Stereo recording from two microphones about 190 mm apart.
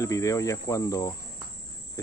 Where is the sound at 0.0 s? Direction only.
15° left (ahead or behind).